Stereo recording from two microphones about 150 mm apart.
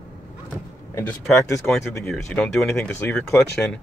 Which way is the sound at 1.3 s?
15° left (ahead or behind).